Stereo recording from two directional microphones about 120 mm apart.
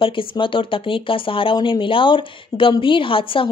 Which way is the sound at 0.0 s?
45° left (ahead or behind).